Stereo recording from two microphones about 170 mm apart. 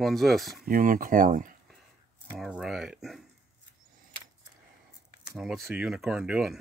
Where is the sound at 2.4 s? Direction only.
Centre (ahead or behind).